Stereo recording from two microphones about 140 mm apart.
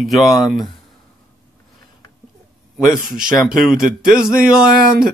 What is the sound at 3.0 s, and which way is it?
Speech, 5° right (ahead or behind).